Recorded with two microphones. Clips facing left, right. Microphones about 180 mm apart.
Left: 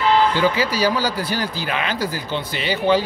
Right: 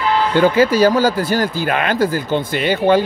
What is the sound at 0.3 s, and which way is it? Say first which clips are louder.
Speech: right 7 dB; 50° right (ahead or behind).